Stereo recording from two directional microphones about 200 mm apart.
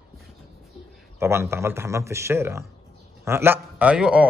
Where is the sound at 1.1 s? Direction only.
15° right (ahead or behind).